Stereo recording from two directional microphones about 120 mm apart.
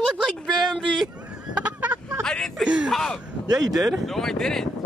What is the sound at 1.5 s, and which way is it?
Fowl, 10° right (ahead or behind).